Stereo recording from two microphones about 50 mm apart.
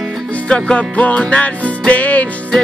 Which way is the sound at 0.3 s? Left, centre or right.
Left.